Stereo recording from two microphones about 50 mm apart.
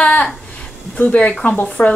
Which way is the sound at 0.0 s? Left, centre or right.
Left.